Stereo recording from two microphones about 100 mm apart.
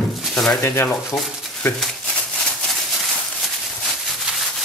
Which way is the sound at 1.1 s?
15° left (ahead or behind).